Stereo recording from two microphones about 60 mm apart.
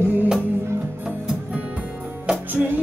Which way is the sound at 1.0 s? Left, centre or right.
Centre.